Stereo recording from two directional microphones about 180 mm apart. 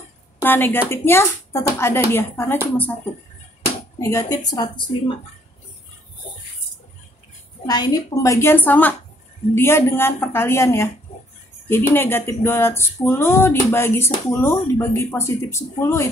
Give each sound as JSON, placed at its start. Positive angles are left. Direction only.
{"t": 0.4, "sound": "speech", "side_deg": 10}
{"t": 4.0, "sound": "a woman's voice", "side_deg": 15}
{"t": 7.6, "sound": "speech", "side_deg": 20}